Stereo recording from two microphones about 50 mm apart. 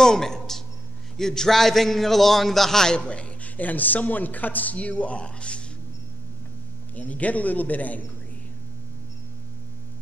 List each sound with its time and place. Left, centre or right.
0.0 s a sound: centre
1.1 s a man's voice: centre
3.0 s a man's voice: left
7.0 s a man's voice: left